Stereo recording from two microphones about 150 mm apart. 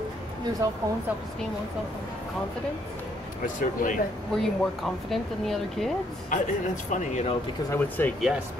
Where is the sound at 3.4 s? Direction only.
60° left (ahead or behind).